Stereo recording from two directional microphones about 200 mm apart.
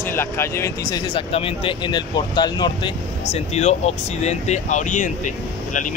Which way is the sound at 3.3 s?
35° left (ahead or behind).